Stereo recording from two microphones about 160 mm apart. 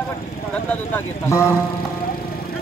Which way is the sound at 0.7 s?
15° left (ahead or behind).